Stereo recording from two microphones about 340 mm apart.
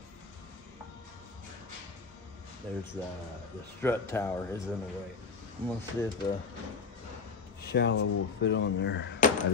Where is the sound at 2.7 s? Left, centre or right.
Centre.